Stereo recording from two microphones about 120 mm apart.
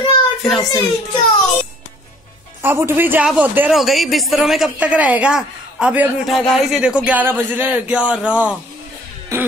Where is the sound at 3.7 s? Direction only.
Centre (ahead or behind).